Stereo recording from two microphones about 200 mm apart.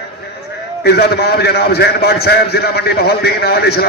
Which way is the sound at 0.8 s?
50° left (ahead or behind).